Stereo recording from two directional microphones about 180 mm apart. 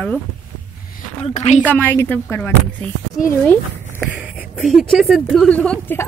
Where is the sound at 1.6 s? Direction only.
10° left (ahead or behind).